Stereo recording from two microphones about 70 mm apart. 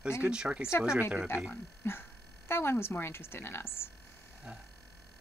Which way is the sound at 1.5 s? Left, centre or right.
Left.